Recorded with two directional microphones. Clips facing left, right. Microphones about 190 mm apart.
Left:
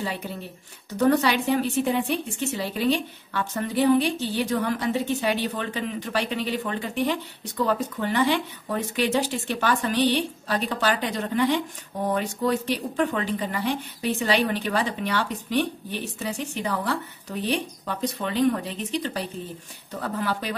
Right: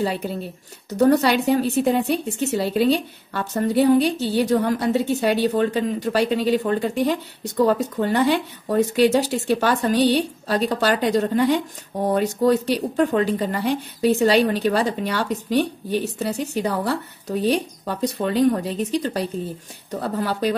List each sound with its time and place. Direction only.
0.8 s a woman's voice: 40° right (ahead or behind)
12.6 s a woman's voice: 40° right (ahead or behind)